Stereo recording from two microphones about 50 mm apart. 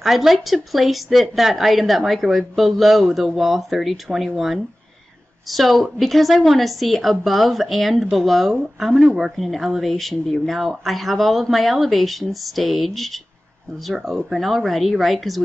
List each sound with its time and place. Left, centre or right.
0.0 s speech: centre